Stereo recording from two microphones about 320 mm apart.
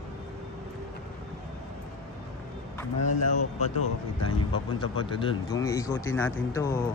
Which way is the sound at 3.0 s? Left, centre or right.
Left.